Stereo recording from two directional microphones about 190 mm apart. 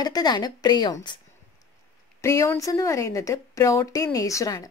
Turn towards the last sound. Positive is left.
turn(degrees=15)  # may be behind; listen again after turning